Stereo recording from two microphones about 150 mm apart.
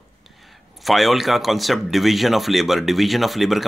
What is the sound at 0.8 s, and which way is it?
Speech, centre (ahead or behind).